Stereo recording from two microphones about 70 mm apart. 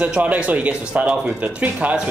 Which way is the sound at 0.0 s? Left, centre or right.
Right.